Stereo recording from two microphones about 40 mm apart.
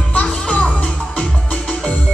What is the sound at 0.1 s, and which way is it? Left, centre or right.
Music, left.